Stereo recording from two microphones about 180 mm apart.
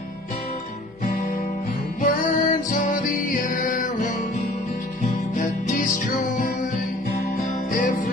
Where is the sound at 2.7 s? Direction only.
45° left (ahead or behind).